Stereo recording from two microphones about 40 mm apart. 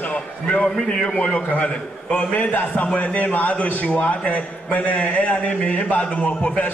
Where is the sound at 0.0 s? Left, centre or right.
Left.